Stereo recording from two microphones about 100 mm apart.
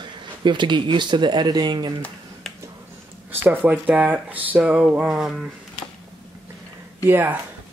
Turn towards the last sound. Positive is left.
turn(degrees=-20)  # may be behind; listen again after turning